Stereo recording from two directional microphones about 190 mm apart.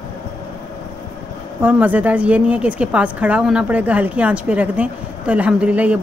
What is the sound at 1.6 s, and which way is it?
A woman's voice, 10° right (ahead or behind).